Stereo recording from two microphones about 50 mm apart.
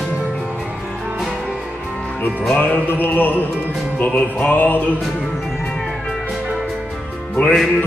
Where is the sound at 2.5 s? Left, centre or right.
Left.